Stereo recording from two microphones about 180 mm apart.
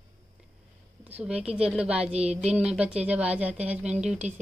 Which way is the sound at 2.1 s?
35° right (ahead or behind).